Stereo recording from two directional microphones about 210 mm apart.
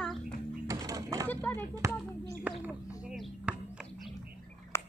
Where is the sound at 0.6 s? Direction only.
15° right (ahead or behind).